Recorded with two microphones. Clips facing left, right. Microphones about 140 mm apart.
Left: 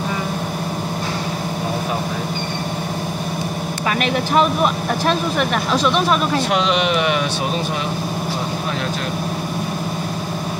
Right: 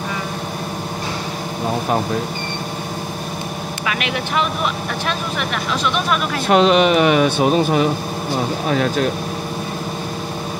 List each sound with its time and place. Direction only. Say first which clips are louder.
4.0 s speech: left 6 dB; 40° left (ahead or behind)
6.5 s speech: right 9 dB; 45° right (ahead or behind)